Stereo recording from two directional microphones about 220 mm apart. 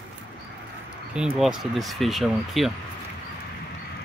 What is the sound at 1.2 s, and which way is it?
Speech, 5° right (ahead or behind).